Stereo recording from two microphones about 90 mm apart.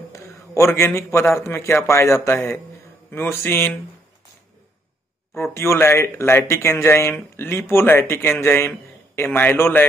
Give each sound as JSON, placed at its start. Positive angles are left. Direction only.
{"t": 0.1, "sound": "a man's voice", "side_deg": 30}
{"t": 5.3, "sound": "speech", "side_deg": 30}